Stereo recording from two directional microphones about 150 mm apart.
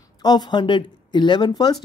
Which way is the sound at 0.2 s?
25° left (ahead or behind).